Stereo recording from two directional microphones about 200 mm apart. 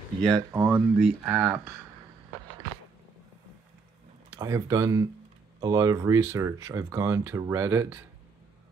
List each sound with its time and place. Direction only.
0.3 s speech: 15° right (ahead or behind)
4.4 s speech: 15° right (ahead or behind)